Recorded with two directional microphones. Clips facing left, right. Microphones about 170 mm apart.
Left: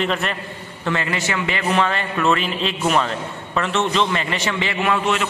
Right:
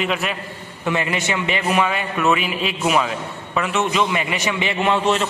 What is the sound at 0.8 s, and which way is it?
A man's voice, 20° right (ahead or behind).